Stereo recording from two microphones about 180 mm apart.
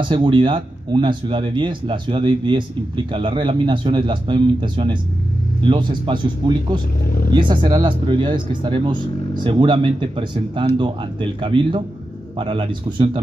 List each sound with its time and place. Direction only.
0.0 s speech: 25° right (ahead or behind)